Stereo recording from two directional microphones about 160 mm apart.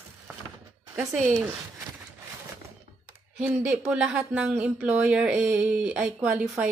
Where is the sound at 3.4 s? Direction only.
10° right (ahead or behind).